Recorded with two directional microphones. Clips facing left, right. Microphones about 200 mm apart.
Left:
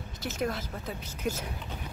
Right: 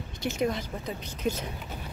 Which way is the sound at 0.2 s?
5° left (ahead or behind).